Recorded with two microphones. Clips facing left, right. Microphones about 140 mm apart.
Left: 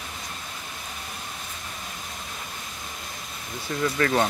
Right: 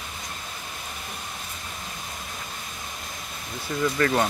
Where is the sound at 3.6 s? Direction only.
Centre (ahead or behind).